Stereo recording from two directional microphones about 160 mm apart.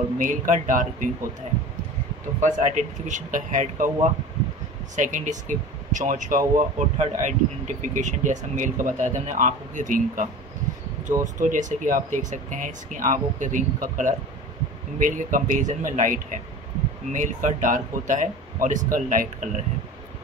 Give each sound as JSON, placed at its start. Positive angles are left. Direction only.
{"t": 0.2, "sound": "speech", "side_deg": -55}
{"t": 2.4, "sound": "speech", "side_deg": -50}